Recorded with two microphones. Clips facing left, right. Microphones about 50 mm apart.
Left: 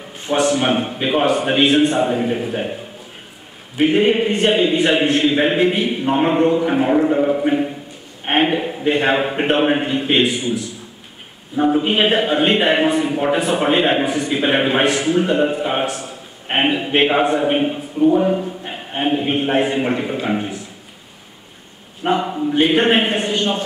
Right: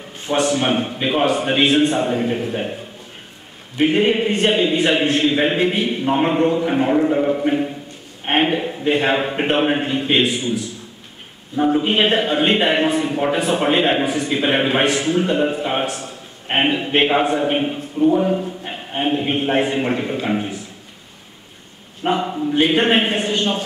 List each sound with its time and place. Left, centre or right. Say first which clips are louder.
0.3 s a man's voice: left 1 dB; centre
3.7 s a man's voice: left 1 dB; centre
22.0 s a man's voice: left 1 dB; centre